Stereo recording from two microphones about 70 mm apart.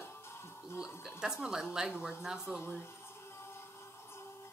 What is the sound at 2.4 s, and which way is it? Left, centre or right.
Speech, left.